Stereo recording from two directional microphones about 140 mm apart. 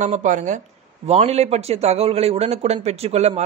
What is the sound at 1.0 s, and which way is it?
A man's voice, 50° right (ahead or behind).